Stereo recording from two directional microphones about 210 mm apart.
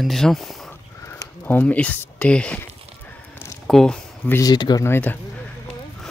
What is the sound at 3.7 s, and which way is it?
Speech, 5° left (ahead or behind).